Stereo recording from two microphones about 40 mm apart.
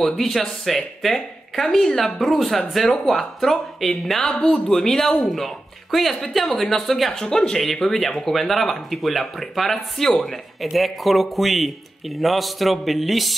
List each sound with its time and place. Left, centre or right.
0.0 s speech: centre
7.6 s speech: centre